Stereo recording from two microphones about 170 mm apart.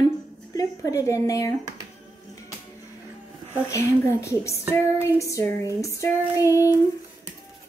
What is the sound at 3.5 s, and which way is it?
Child singing, 15° left (ahead or behind).